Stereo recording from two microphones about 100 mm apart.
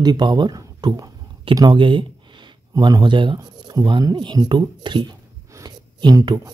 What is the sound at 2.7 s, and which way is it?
Speech, 45° right (ahead or behind).